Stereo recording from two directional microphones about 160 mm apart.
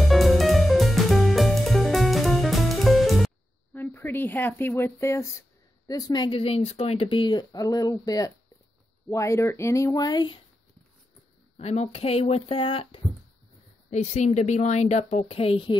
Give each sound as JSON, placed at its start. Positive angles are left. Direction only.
{"t": 0.0, "sound": "music", "side_deg": 0}
{"t": 3.7, "sound": "speech", "side_deg": 10}
{"t": 11.5, "sound": "speech", "side_deg": 45}
{"t": 13.8, "sound": "a woman's voice", "side_deg": 45}